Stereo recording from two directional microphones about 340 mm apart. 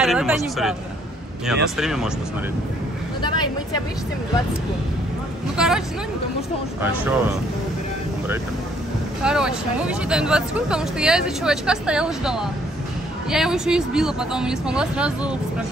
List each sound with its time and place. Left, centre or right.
0.0 s speech: centre
3.2 s vehicle: centre
5.6 s speech: centre
9.2 s speech: centre